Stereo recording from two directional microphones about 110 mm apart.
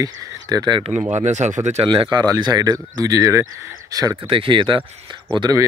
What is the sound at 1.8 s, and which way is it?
Speech, 45° right (ahead or behind).